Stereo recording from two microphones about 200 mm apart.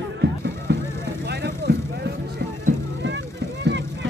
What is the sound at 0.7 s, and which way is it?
Vehicle, 55° right (ahead or behind).